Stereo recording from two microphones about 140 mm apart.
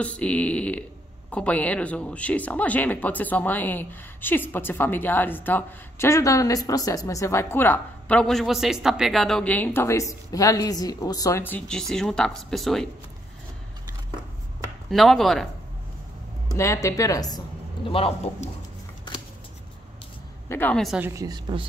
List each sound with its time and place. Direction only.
0.0 s speech: 10° left (ahead or behind)
14.9 s speech: centre (ahead or behind)
16.5 s speech: 20° left (ahead or behind)
17.8 s a man's voice: 40° left (ahead or behind)
20.4 s a woman's voice: 15° left (ahead or behind)
20.7 s speech: centre (ahead or behind)
21.0 s a woman's voice: 20° right (ahead or behind)